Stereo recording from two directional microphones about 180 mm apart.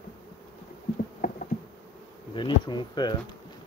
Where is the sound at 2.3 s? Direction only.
25° left (ahead or behind).